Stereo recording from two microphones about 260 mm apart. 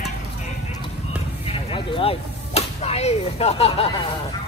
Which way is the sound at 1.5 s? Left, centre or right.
Left.